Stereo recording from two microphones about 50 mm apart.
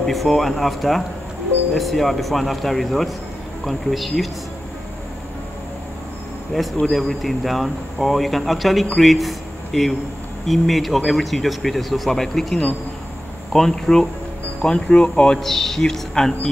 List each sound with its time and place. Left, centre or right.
0.0 s speech: centre
6.5 s a man's voice: centre
14.6 s speech: left
15.3 s a man's voice: centre